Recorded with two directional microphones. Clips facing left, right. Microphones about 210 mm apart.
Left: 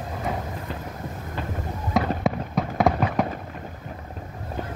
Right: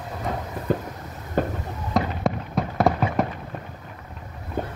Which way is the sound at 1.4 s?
50° right (ahead or behind).